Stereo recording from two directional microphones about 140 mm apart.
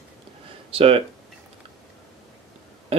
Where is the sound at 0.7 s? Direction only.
40° right (ahead or behind).